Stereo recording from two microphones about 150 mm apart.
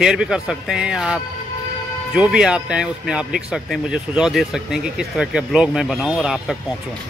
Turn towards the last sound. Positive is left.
turn(degrees=-5)  # may be behind; listen again after turning